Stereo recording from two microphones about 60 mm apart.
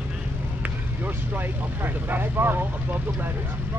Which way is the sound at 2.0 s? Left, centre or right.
Right.